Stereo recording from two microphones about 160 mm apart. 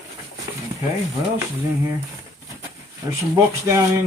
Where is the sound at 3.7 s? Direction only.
20° right (ahead or behind).